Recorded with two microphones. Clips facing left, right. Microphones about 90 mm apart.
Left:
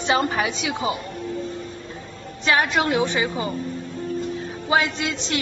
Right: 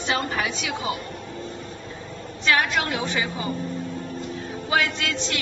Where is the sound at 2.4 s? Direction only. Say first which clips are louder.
Left 2 dB; 25° left (ahead or behind).